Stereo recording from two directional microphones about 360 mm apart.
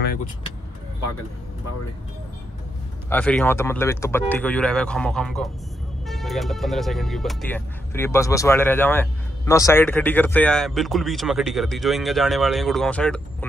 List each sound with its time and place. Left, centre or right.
3.1 s speech: centre